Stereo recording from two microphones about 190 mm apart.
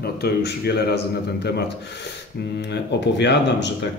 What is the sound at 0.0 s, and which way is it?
A man's voice, 60° left (ahead or behind).